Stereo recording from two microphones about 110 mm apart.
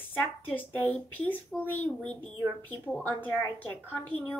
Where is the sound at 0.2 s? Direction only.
15° left (ahead or behind).